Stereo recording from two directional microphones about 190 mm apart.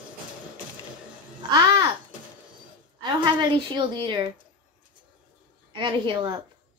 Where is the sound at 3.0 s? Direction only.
25° right (ahead or behind).